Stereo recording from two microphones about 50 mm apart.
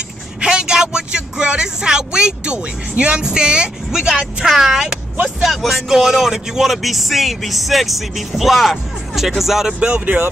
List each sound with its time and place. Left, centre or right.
0.4 s speech: centre
4.5 s speech: centre
9.8 s speech: right